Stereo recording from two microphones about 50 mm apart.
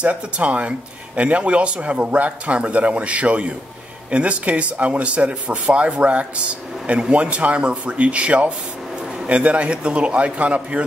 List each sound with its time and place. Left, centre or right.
0.0 s a man's voice: right